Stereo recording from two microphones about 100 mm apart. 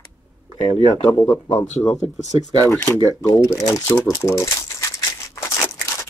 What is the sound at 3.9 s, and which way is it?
Crumpling, 25° left (ahead or behind).